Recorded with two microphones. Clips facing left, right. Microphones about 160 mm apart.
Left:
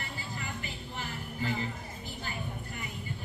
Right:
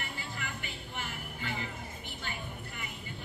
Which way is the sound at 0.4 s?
35° left (ahead or behind).